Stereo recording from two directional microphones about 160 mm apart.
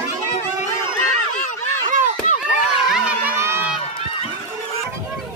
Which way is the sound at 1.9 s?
50° right (ahead or behind).